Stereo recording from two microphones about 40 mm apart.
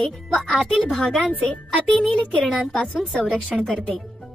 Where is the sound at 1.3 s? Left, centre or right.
Left.